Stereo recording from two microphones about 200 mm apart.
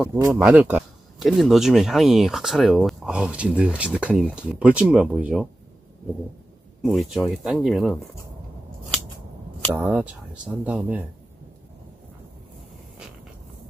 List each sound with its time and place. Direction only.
0.1 s speech: 15° right (ahead or behind)
6.8 s speech: centre (ahead or behind)
9.8 s speech: 5° right (ahead or behind)